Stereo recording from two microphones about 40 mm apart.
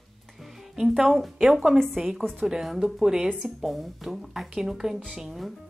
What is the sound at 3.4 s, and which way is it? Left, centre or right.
A woman's voice, centre.